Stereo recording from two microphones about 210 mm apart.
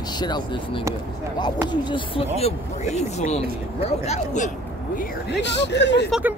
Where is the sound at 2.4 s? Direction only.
35° left (ahead or behind).